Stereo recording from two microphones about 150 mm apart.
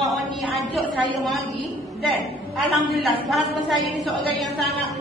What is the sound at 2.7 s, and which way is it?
A woman's voice, centre (ahead or behind).